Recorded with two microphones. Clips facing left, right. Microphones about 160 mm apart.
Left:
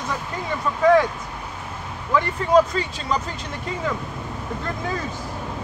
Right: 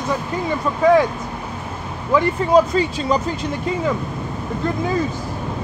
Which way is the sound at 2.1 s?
5° right (ahead or behind).